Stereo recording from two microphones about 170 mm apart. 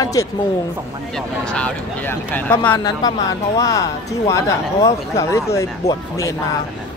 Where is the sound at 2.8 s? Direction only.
20° left (ahead or behind).